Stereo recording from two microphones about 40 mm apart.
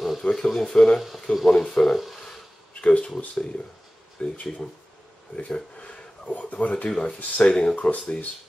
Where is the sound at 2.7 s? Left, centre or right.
Left.